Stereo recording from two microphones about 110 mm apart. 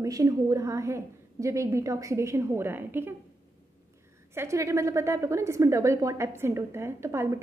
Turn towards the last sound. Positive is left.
turn(degrees=-25)  # may be behind; listen again after turning